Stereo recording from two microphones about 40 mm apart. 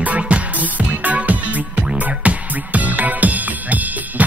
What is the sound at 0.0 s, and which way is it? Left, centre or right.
Music, right.